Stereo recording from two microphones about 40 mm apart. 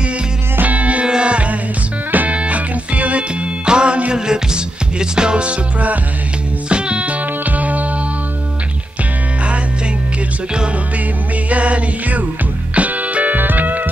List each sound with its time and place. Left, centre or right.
0.6 s music: right
1.0 s music: right
2.0 s music: right
2.3 s music: right
11.4 s music: right